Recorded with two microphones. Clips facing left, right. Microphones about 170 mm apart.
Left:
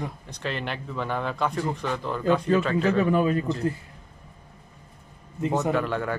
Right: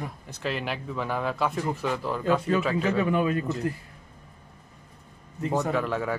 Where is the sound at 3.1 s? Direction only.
35° left (ahead or behind).